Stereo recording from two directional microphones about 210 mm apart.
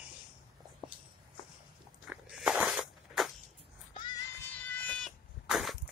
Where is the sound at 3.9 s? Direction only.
20° left (ahead or behind).